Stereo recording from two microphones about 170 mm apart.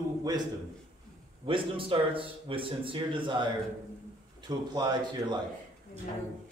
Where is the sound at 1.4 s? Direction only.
30° right (ahead or behind).